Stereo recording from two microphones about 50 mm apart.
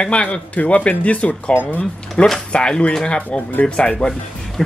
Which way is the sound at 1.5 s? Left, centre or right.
Left.